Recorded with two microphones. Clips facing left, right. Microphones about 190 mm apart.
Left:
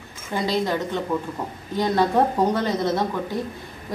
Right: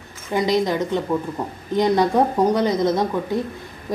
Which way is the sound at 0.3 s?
20° right (ahead or behind).